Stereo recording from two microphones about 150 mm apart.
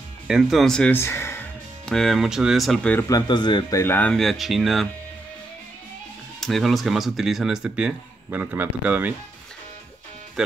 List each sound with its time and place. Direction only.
0.3 s speech: centre (ahead or behind)
0.9 s speech: 15° left (ahead or behind)
1.9 s speech: 5° left (ahead or behind)
3.1 s speech: 30° left (ahead or behind)
3.8 s speech: 10° left (ahead or behind)
6.4 s speech: centre (ahead or behind)